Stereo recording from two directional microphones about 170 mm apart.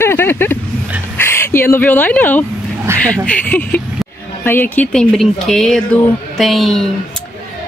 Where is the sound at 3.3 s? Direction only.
10° left (ahead or behind).